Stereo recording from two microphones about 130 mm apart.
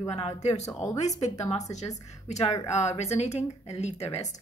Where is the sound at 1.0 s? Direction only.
65° left (ahead or behind).